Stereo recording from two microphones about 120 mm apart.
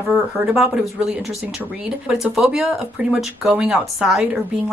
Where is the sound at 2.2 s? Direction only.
5° right (ahead or behind).